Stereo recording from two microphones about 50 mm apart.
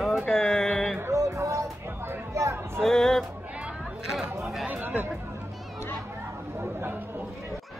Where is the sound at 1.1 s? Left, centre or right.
Right.